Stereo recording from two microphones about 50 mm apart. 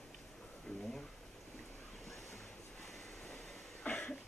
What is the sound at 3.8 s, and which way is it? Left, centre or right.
Cough, left.